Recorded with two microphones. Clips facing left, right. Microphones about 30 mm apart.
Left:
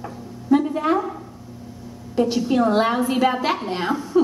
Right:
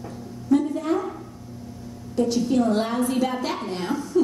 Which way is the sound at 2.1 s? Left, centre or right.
Left.